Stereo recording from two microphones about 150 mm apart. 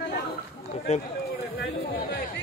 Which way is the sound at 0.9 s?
45° left (ahead or behind).